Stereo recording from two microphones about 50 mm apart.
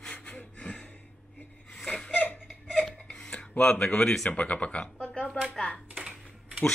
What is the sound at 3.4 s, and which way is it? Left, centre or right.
Speech, left.